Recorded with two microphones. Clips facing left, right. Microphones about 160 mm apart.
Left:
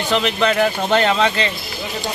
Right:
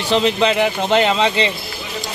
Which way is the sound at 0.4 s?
15° right (ahead or behind).